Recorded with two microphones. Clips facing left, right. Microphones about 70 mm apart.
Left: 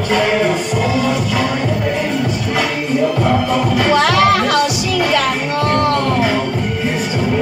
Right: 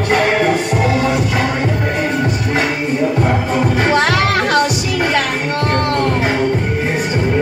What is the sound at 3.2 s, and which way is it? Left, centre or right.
Music, right.